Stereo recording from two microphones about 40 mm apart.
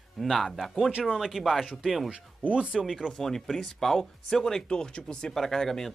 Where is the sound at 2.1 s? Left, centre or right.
Right.